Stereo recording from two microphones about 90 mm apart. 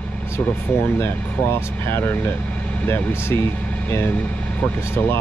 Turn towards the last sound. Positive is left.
turn(degrees=25)  # may be behind; listen again after turning